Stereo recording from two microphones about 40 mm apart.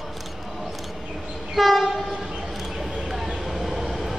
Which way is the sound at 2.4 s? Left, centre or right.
Centre.